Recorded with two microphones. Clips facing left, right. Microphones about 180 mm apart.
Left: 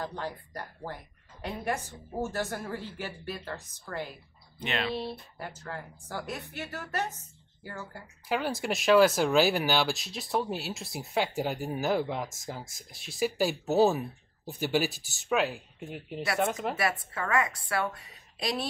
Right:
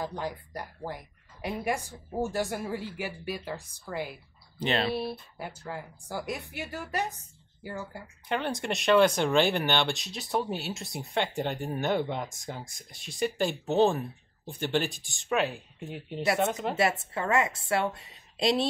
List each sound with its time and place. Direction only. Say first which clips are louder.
0.0 s speech: right 2 dB; 15° right (ahead or behind)
4.6 s speech: right 4 dB; 35° right (ahead or behind)
4.9 s speech: right 2 dB; 10° right (ahead or behind)
8.3 s speech: even; 5° left (ahead or behind)
16.7 s a woman's voice: right 4 dB; 25° right (ahead or behind)